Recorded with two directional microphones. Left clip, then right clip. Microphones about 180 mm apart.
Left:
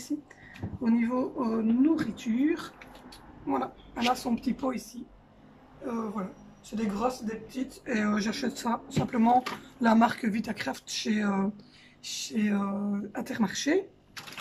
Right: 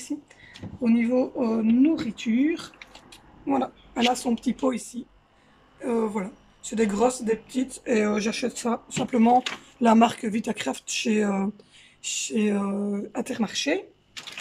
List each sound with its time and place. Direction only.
0.8 s a woman's voice: 15° right (ahead or behind)